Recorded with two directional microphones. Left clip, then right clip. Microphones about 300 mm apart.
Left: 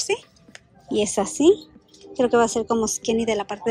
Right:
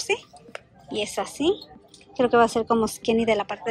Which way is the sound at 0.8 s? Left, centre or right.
Centre.